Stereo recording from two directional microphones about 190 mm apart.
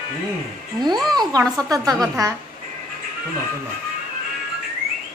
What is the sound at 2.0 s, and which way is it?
Speech, 15° right (ahead or behind).